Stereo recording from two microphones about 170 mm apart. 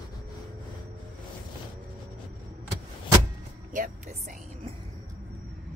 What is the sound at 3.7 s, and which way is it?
Speech, 50° right (ahead or behind).